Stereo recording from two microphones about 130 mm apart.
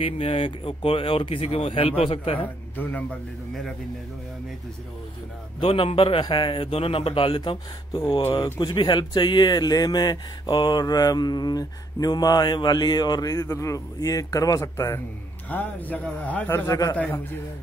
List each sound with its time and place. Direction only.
0.0 s speech: 45° left (ahead or behind)
2.8 s a man's voice: 10° left (ahead or behind)
5.6 s speech: 45° left (ahead or behind); by 15.0 s 20° left (ahead or behind)
15.5 s a man's voice: 10° left (ahead or behind)
16.9 s a man's voice: 10° left (ahead or behind)